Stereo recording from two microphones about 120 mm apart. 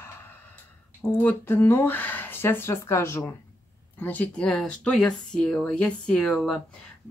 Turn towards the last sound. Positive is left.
turn(degrees=10)  # may be behind; listen again after turning